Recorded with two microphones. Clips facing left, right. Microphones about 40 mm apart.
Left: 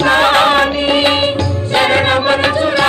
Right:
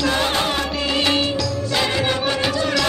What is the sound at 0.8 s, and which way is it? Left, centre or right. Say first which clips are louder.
Music: left 7 dB; left.